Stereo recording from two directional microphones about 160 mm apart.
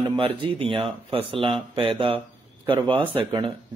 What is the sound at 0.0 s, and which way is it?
A man's voice, 30° right (ahead or behind).